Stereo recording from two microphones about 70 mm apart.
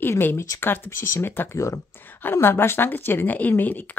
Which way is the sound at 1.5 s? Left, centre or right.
Left.